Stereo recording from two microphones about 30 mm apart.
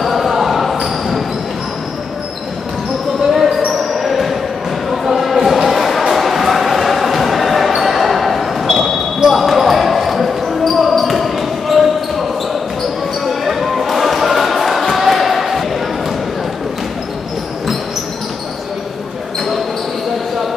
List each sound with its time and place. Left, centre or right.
0.0 s basketball bounce: centre
3.7 s basketball bounce: centre
4.8 s a sound: centre
13.2 s basketball bounce: centre